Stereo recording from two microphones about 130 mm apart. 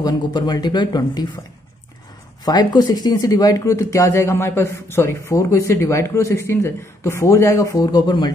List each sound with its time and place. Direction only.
0.0 s speech: 30° left (ahead or behind)
2.4 s speech: 30° left (ahead or behind)